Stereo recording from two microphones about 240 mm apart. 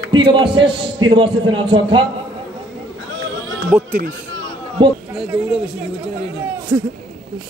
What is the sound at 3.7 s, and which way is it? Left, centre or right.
Speech, centre.